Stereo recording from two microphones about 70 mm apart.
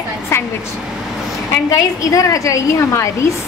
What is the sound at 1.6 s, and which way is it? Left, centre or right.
A woman's voice, left.